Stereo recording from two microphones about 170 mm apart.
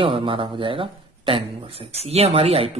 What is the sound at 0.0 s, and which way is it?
A man's voice, 30° right (ahead or behind).